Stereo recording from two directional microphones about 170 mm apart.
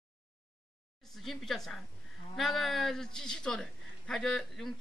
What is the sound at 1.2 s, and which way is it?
A man's voice, centre (ahead or behind).